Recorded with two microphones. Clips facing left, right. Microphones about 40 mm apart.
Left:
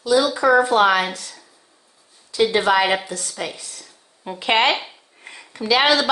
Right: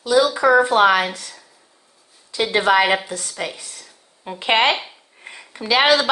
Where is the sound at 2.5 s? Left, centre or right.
Right.